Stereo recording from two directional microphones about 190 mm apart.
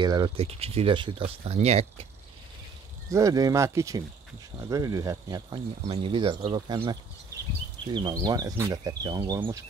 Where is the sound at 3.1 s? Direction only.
15° right (ahead or behind).